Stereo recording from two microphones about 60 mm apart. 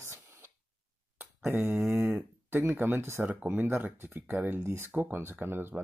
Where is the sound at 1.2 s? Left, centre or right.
Right.